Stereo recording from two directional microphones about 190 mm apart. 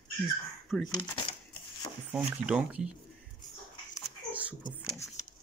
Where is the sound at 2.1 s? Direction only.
5° right (ahead or behind).